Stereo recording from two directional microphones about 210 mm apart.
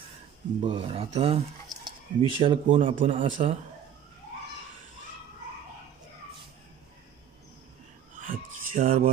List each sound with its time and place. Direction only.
0.6 s speech: 25° right (ahead or behind)
2.8 s a man's voice: 40° right (ahead or behind)
8.3 s a sound: 40° right (ahead or behind)